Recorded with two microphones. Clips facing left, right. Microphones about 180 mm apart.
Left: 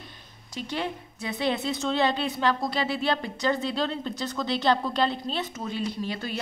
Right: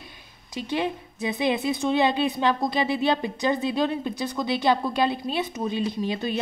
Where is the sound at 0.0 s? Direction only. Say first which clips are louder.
Even; 10° right (ahead or behind).